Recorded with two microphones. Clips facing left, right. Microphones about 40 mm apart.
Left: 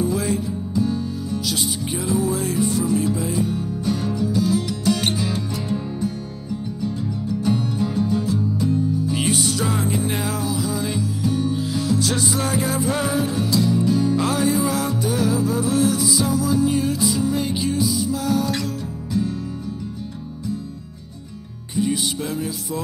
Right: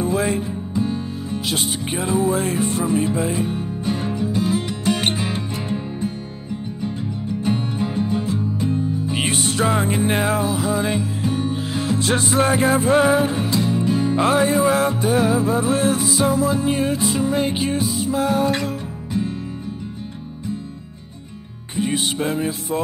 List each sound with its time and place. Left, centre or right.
0.0 s music: right
21.7 s music: right